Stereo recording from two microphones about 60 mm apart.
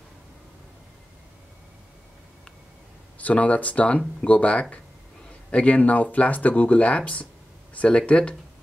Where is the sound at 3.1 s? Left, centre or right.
Left.